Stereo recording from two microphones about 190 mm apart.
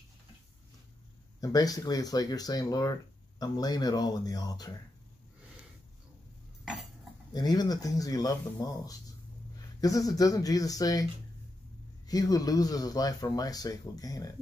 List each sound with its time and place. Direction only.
1.4 s speech: 20° left (ahead or behind)
6.6 s a sound: centre (ahead or behind)
7.3 s speech: 20° left (ahead or behind)
12.1 s speech: 20° left (ahead or behind)